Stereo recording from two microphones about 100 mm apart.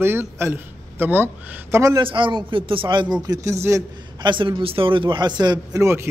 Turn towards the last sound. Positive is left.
turn(degrees=-25)  # may be behind; listen again after turning